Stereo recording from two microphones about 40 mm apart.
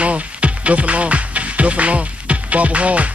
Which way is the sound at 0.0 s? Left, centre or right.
Right.